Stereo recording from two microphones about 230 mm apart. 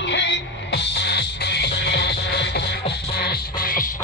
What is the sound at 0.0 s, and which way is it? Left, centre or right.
Music, left.